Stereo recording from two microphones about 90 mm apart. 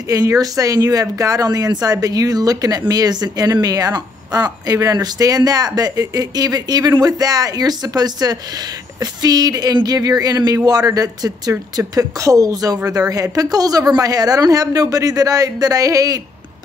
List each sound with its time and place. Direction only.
0.1 s a woman's voice: 40° right (ahead or behind)